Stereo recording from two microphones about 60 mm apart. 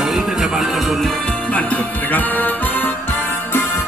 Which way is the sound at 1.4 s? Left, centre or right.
Left.